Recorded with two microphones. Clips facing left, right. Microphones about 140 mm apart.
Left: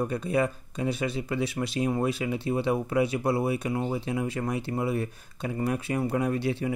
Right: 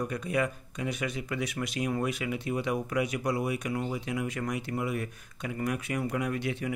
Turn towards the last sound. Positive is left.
turn(degrees=30)  # may be behind; listen again after turning